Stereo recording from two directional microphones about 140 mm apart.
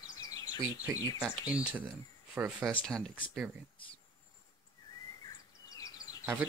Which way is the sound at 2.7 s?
5° left (ahead or behind).